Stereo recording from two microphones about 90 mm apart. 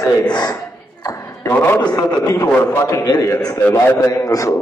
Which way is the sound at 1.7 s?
55° left (ahead or behind).